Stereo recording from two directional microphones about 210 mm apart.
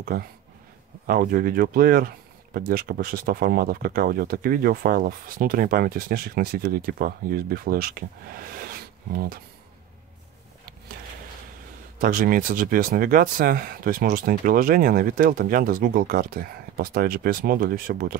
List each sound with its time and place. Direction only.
0.1 s speech: 45° right (ahead or behind)
12.0 s speech: 40° right (ahead or behind)